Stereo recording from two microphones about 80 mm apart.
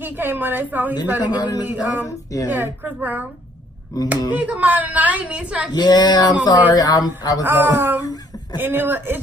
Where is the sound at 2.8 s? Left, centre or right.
Right.